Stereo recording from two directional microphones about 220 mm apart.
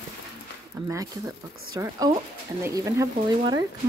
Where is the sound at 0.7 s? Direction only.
15° right (ahead or behind).